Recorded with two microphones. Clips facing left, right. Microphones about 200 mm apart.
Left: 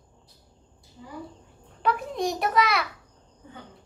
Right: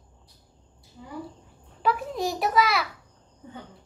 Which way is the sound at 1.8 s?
Centre (ahead or behind).